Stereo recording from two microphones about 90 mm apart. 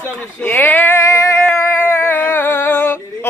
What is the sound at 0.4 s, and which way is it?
Speech, 20° left (ahead or behind).